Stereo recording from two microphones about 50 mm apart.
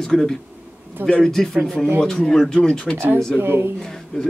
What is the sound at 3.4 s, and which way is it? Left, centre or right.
Speech, right.